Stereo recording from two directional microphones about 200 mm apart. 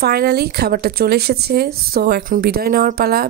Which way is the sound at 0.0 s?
50° right (ahead or behind).